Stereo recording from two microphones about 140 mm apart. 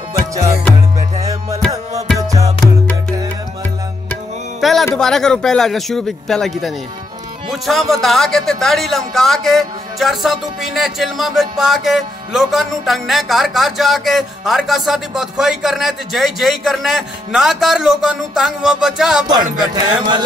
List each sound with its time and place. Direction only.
1.1 s music: 50° right (ahead or behind)
2.1 s music: 25° right (ahead or behind)
4.6 s a sound: centre (ahead or behind)
4.9 s speech: 5° left (ahead or behind)
19.6 s speech: 30° right (ahead or behind)